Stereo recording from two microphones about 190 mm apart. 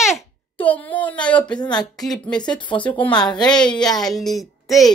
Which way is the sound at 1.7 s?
20° left (ahead or behind).